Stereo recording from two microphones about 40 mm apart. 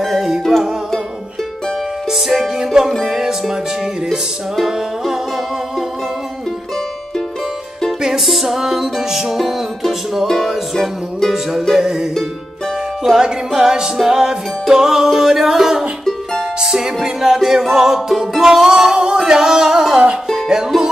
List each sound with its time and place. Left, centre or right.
0.0 s music: centre
2.0 s music: centre
4.6 s music: centre
8.3 s music: centre
11.8 s music: centre